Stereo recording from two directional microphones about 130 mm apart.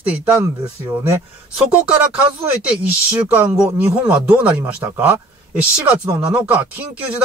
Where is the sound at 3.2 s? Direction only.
10° right (ahead or behind).